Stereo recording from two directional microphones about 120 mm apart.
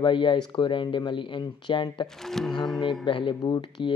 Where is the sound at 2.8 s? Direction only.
45° left (ahead or behind).